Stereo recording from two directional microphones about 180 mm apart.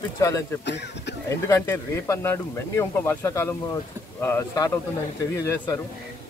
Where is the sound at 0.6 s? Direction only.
75° left (ahead or behind).